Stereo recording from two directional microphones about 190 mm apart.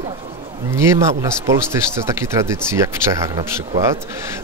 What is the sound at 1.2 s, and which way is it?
Speech, 15° right (ahead or behind).